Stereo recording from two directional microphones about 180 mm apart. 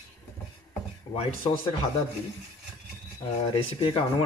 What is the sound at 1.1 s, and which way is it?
Speech, 35° left (ahead or behind).